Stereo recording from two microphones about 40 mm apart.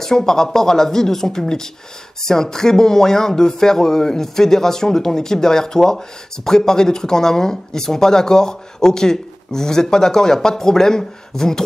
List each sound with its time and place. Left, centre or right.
0.0 s speech: centre